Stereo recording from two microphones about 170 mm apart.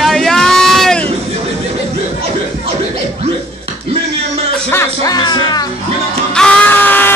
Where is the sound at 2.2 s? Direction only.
35° right (ahead or behind).